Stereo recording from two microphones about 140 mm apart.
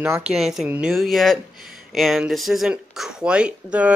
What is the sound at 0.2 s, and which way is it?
Speech, centre (ahead or behind).